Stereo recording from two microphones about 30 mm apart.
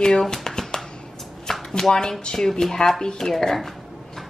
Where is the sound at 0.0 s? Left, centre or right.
Centre.